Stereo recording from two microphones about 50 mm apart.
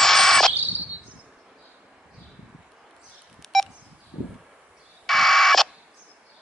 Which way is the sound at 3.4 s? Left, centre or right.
Centre.